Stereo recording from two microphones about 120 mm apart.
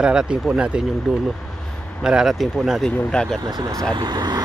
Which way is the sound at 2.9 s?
10° left (ahead or behind).